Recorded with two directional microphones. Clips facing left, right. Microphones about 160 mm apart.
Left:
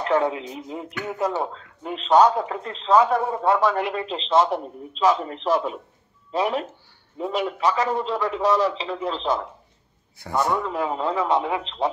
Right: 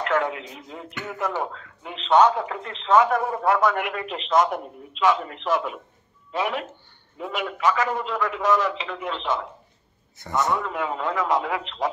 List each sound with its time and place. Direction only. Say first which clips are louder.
0.0 s a man's voice: left 3 dB; 25° left (ahead or behind)
0.6 s a man's voice: left 6 dB; 10° left (ahead or behind)
1.2 s a man's voice: left 2 dB; 30° left (ahead or behind)
10.1 s a man's voice: left 1 dB; 10° left (ahead or behind)
10.6 s speech: left 2 dB; 30° left (ahead or behind)